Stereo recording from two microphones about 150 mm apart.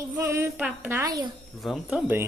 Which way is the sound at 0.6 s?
10° right (ahead or behind).